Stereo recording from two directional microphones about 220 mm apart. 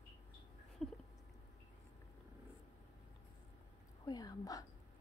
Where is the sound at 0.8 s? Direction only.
Centre (ahead or behind).